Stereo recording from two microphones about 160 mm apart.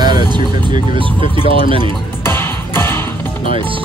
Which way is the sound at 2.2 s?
15° left (ahead or behind).